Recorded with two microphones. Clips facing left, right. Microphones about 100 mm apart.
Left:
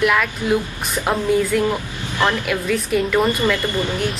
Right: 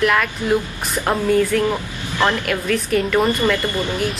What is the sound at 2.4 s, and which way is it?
Speech, 5° left (ahead or behind).